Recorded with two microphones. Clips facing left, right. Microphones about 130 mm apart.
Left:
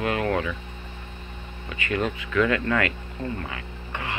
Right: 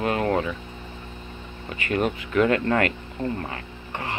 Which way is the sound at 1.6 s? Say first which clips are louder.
Right 2 dB; 40° right (ahead or behind).